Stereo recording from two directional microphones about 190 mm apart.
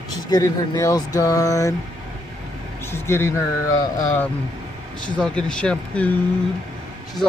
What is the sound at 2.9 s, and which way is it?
Speech, 10° left (ahead or behind).